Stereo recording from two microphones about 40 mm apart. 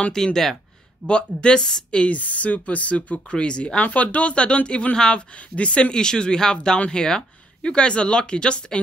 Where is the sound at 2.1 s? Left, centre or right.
Left.